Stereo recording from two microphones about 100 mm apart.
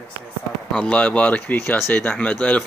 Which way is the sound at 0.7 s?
10° left (ahead or behind).